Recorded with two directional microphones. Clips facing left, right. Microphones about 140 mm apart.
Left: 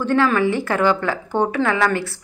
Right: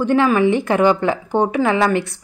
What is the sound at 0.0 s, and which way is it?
A woman's voice, 15° right (ahead or behind).